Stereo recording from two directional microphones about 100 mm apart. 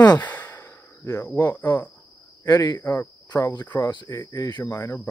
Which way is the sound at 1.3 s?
15° left (ahead or behind).